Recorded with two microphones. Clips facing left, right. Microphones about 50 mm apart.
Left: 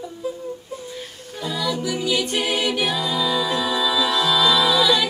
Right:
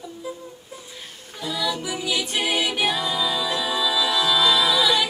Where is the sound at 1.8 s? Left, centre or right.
Centre.